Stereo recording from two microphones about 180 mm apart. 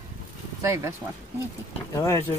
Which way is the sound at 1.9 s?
15° left (ahead or behind).